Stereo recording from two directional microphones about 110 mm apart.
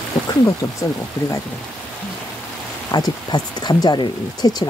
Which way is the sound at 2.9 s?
40° left (ahead or behind).